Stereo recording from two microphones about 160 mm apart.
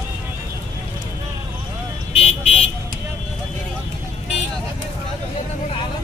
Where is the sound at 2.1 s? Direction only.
40° left (ahead or behind).